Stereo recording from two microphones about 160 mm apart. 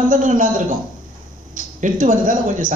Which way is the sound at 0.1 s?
55° right (ahead or behind).